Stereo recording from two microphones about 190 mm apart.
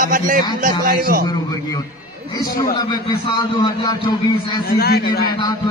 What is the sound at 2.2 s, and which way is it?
A man's voice, 20° left (ahead or behind).